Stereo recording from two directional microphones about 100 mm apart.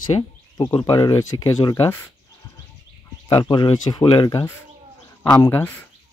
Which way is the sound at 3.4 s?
45° left (ahead or behind).